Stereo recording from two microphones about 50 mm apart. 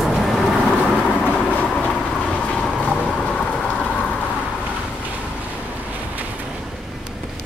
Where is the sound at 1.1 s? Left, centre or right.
Left.